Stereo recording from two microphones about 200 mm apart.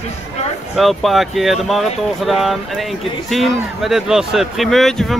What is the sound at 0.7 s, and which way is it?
Speech, centre (ahead or behind).